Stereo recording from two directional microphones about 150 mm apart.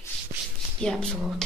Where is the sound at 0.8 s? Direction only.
5° left (ahead or behind).